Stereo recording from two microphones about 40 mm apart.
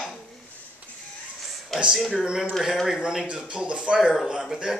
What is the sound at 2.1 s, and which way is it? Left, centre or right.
Speech, centre.